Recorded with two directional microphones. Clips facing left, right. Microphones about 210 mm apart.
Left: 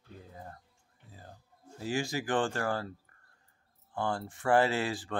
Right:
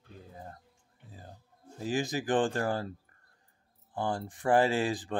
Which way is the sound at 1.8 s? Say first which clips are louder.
Right 2 dB; 20° right (ahead or behind).